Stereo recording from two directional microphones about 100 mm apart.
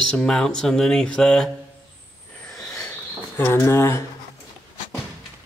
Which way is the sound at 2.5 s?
5° left (ahead or behind).